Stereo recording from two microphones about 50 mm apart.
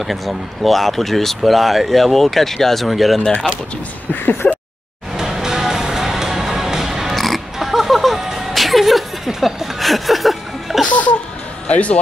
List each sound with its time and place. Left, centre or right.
0.0 s speech: centre
4.1 s a sound: left
5.1 s music: centre
11.6 s speech: left